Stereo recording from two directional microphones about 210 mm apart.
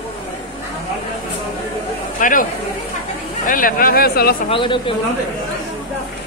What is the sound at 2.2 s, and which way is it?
Speech, 40° left (ahead or behind).